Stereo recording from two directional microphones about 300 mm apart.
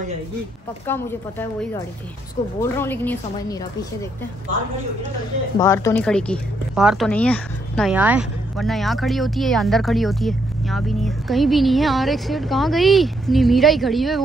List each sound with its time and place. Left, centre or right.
0.8 s speech: centre
5.6 s speech: centre